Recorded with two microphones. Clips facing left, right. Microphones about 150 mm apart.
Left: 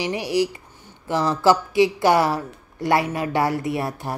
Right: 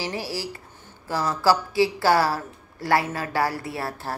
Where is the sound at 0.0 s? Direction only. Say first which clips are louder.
Left 8 dB; 15° left (ahead or behind).